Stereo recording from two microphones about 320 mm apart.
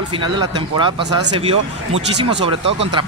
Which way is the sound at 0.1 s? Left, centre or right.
Centre.